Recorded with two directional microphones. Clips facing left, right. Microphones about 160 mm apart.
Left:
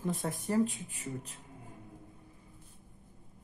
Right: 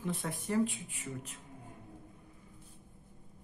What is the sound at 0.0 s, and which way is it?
Speech, 40° left (ahead or behind).